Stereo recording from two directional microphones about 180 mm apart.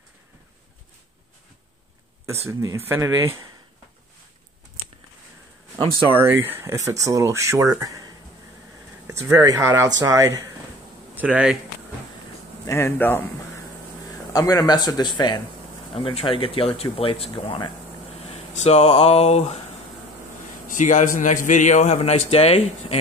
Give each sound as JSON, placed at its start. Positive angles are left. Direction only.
{"t": 2.4, "sound": "speech", "side_deg": -15}
{"t": 6.1, "sound": "speech", "side_deg": -10}
{"t": 11.1, "sound": "speech", "side_deg": -5}
{"t": 12.6, "sound": "speech", "side_deg": 15}
{"t": 14.3, "sound": "a man's voice", "side_deg": 20}
{"t": 20.6, "sound": "a man's voice", "side_deg": 45}